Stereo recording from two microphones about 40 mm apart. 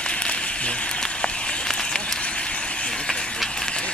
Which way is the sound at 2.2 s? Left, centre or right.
Left.